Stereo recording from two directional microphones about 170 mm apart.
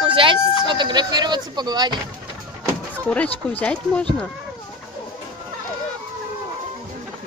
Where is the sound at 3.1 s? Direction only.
10° left (ahead or behind).